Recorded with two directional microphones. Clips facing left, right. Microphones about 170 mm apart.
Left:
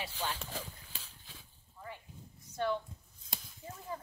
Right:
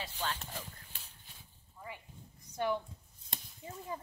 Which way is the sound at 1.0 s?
90° left.